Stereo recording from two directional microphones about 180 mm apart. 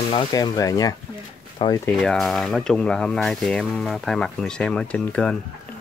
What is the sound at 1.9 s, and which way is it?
Speech, centre (ahead or behind).